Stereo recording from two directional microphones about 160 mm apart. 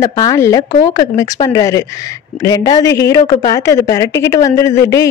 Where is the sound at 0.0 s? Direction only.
20° left (ahead or behind).